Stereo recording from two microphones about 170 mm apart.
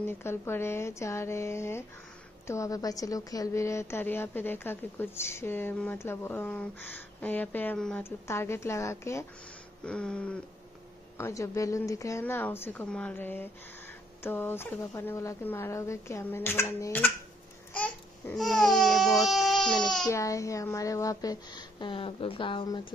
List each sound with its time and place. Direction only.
0.2 s a woman's voice: 15° left (ahead or behind)
9.8 s a woman's voice: 5° left (ahead or behind)
17.7 s babbling: 10° left (ahead or behind)
18.8 s speech: centre (ahead or behind)
20.1 s speech: 20° left (ahead or behind)